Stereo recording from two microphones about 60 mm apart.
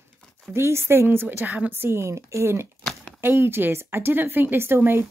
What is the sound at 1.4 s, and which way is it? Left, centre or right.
A woman's voice, right.